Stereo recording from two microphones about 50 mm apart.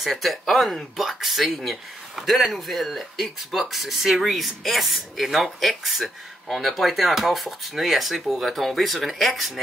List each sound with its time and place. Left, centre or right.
0.0 s speech: centre